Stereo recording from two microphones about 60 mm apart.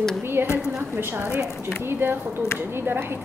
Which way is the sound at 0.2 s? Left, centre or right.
Right.